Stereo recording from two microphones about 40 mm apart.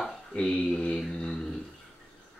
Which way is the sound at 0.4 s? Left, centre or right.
Left.